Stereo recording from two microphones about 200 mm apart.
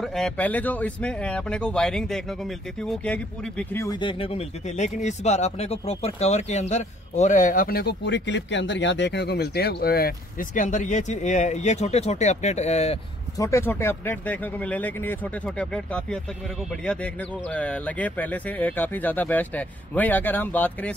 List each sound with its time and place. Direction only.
0.0 s speech: centre (ahead or behind); by 13.0 s 30° left (ahead or behind)
13.4 s speech: 15° left (ahead or behind)